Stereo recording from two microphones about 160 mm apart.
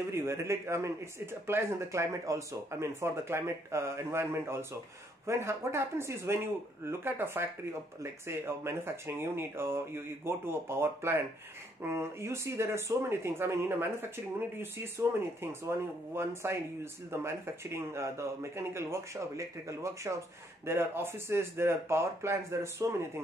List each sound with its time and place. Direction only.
0.1 s speech: 15° right (ahead or behind)